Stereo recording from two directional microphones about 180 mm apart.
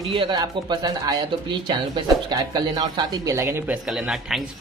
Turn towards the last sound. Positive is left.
turn(degrees=0)  # may be behind; listen again after turning